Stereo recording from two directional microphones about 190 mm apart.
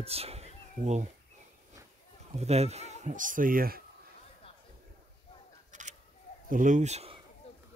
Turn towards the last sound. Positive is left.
turn(degrees=-35)  # may be behind; listen again after turning